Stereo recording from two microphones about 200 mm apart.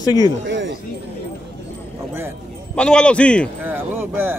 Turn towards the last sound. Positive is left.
turn(degrees=-10)  # may be behind; listen again after turning